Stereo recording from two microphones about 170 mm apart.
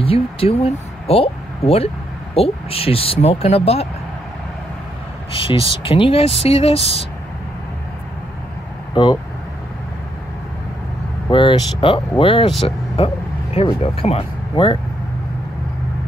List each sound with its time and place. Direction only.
0.0 s speech: 35° left (ahead or behind)
5.4 s speech: 30° left (ahead or behind)
8.9 s speech: 25° left (ahead or behind)
11.2 s speech: 30° left (ahead or behind)